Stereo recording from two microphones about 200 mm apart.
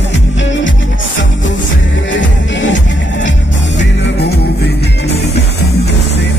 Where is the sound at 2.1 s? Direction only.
65° left (ahead or behind).